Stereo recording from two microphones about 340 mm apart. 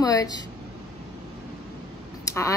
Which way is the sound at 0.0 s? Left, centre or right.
Centre.